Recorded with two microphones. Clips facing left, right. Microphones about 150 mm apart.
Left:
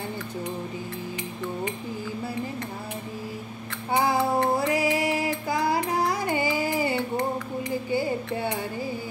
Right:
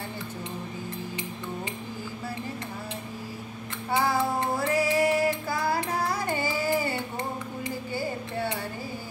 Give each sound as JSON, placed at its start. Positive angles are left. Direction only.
{"t": 4.6, "sound": "music", "side_deg": 15}